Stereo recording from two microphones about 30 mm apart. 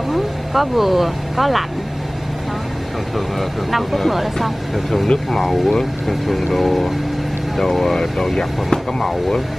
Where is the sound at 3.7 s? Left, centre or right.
Centre.